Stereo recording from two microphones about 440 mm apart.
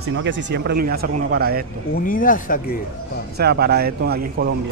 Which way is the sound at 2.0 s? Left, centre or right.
Centre.